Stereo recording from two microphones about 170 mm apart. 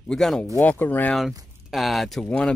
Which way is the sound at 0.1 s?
Centre (ahead or behind).